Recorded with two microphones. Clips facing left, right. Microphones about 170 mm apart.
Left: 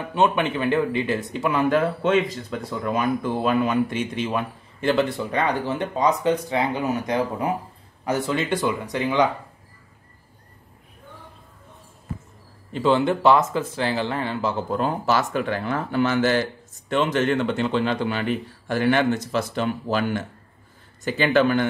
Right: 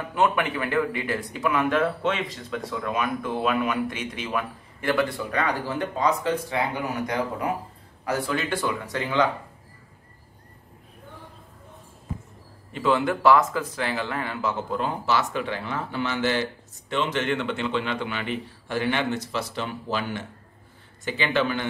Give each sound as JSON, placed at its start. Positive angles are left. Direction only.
{"t": 0.1, "sound": "speech", "side_deg": 25}
{"t": 12.7, "sound": "a man's voice", "side_deg": 30}